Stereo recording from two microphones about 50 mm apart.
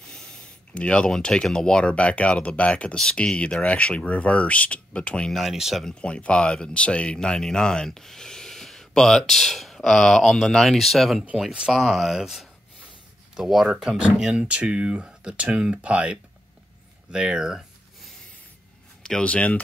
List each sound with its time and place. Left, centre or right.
0.0 s a sound: centre
0.7 s speech: centre
5.3 s speech: centre
5.9 s speech: left; by 17.6 s centre
19.2 s speech: left